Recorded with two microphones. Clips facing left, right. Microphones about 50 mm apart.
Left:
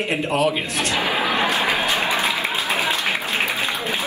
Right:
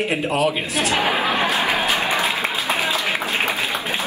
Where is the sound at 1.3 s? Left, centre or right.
Centre.